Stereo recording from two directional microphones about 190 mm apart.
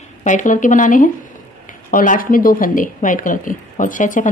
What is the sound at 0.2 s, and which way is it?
Speech, 40° left (ahead or behind).